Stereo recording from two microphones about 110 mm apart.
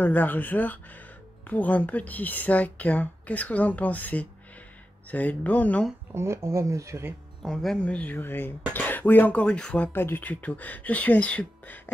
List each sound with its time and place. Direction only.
0.0 s speech: 15° left (ahead or behind)
6.1 s speech: 25° right (ahead or behind)
7.4 s speech: 5° left (ahead or behind)